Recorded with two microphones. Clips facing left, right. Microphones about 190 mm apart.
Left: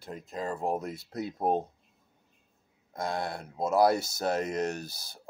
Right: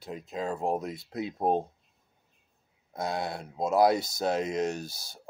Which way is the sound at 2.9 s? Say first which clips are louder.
Right 1 dB; 5° right (ahead or behind).